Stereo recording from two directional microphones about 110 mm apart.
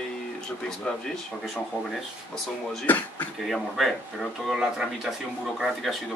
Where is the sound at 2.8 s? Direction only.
15° left (ahead or behind).